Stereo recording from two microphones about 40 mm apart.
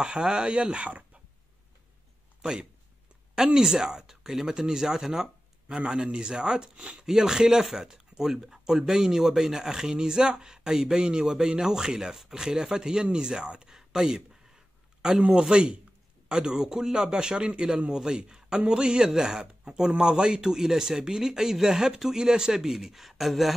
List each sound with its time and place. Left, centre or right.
0.0 s speech: right
3.5 s speech: centre
5.8 s speech: right
7.0 s speech: centre